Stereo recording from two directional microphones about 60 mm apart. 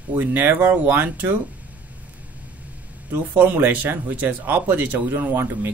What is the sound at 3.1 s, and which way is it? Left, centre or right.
Speech, right.